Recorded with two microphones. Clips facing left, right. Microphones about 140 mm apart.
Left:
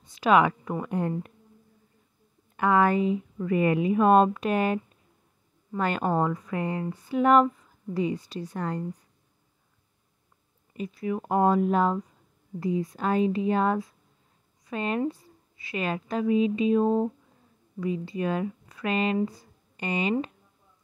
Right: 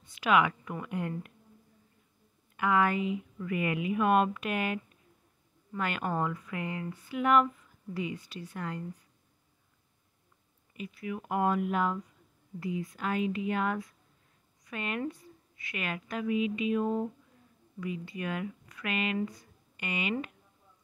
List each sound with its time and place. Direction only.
0.0 s speech: 35° left (ahead or behind)
2.5 s speech: 40° left (ahead or behind)
10.7 s speech: 35° left (ahead or behind)